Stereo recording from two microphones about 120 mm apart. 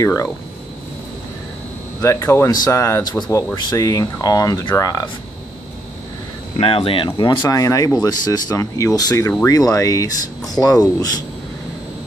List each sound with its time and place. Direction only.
0.0 s speech: 25° left (ahead or behind)
2.0 s speech: 25° left (ahead or behind)
6.6 s speech: 50° left (ahead or behind)
7.2 s speech: 40° left (ahead or behind)